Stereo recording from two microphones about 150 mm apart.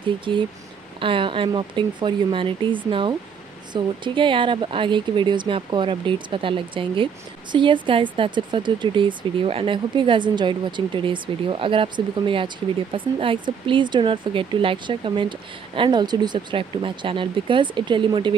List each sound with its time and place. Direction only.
0.3 s speech: 35° right (ahead or behind)